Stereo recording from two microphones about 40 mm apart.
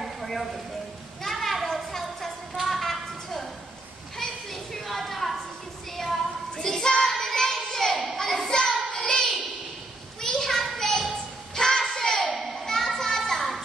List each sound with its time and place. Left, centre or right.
0.2 s a sound: centre
6.5 s child singing: centre
8.2 s hands: centre
8.9 s child singing: centre
10.2 s a sound: centre
11.5 s music: centre
12.3 s children playing: centre